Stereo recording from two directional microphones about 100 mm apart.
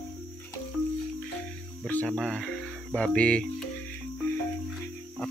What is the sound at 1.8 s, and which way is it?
Music, 10° left (ahead or behind).